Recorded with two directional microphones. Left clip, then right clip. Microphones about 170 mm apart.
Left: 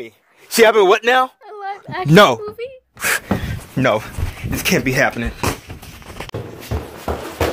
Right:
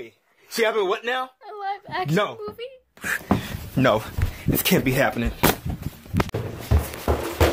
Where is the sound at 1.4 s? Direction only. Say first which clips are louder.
Left 2 dB; 5° left (ahead or behind).